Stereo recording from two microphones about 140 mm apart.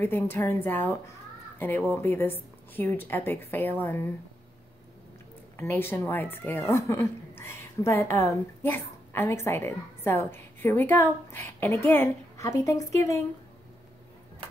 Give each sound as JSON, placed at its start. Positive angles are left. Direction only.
{"t": 0.0, "sound": "a woman's voice", "side_deg": 15}
{"t": 5.6, "sound": "a woman's voice", "side_deg": 15}